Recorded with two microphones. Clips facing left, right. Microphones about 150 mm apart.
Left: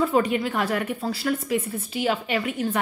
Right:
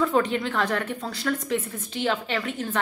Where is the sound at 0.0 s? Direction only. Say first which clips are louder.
Left 1 dB; 10° left (ahead or behind).